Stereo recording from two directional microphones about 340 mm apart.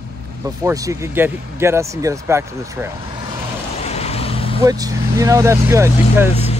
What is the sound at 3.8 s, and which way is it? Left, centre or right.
Vehicle, centre.